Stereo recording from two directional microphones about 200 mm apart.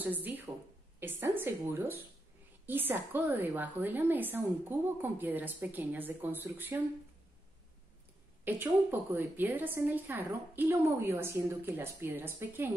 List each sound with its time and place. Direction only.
0.0 s a woman's voice: 10° right (ahead or behind)
8.5 s a woman's voice: 10° right (ahead or behind)